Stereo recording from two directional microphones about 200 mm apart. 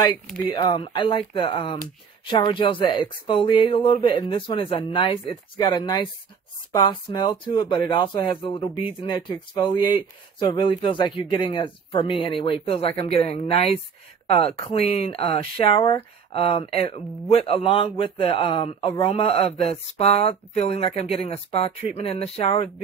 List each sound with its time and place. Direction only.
0.4 s speech: 20° left (ahead or behind)